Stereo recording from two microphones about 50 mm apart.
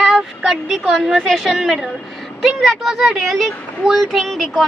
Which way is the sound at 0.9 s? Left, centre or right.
Centre.